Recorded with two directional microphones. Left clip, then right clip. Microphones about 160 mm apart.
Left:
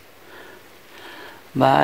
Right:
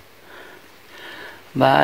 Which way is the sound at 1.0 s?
5° left (ahead or behind).